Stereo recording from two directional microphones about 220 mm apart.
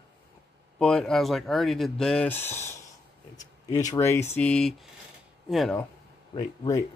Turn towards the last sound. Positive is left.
turn(degrees=15)  # may be behind; listen again after turning